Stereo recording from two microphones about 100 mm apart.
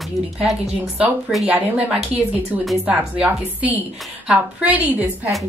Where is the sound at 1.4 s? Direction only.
15° right (ahead or behind).